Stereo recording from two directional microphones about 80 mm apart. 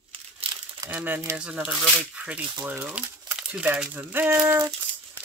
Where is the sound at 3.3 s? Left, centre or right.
Centre.